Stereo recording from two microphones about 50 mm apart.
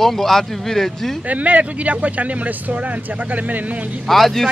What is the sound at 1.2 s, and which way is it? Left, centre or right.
Speech, right.